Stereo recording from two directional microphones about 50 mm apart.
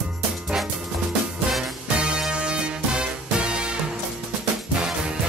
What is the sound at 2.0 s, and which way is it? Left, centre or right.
Music, centre.